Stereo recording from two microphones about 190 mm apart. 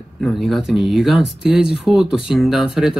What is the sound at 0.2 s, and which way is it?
Speech, centre (ahead or behind).